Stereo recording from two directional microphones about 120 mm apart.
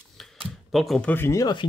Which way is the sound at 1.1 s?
20° left (ahead or behind).